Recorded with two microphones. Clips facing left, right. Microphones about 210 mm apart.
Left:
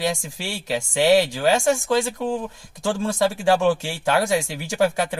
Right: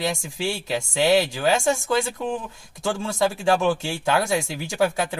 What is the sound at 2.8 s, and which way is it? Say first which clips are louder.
Speech: left 2 dB; centre (ahead or behind).